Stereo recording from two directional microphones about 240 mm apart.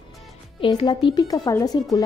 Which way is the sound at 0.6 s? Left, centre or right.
Centre.